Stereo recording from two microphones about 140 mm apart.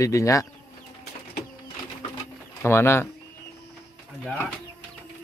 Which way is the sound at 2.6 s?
20° left (ahead or behind).